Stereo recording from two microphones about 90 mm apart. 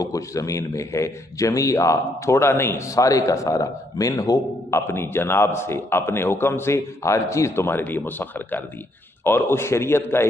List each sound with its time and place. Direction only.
0.0 s a man's voice: 40° left (ahead or behind)